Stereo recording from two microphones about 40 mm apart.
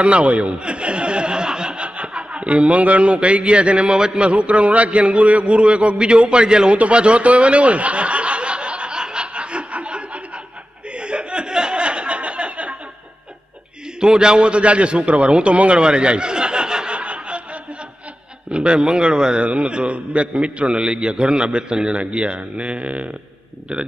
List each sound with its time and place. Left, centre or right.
0.0 s speech: right
6.8 s snicker: right
11.0 s a sound: right
13.9 s a man's voice: centre
16.9 s snicker: right
18.5 s a man's voice: right